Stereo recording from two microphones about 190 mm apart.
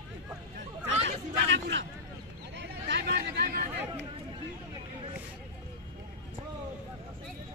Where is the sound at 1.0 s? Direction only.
70° right (ahead or behind).